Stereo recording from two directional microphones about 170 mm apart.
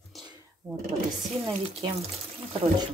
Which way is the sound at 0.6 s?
20° right (ahead or behind).